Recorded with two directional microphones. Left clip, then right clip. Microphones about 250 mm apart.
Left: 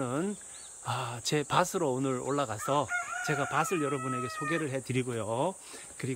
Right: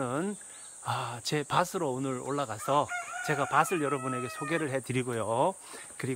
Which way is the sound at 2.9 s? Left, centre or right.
Right.